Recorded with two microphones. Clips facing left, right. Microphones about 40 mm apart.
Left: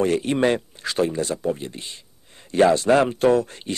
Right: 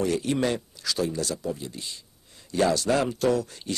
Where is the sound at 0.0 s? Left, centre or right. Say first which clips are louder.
Left 5 dB; left.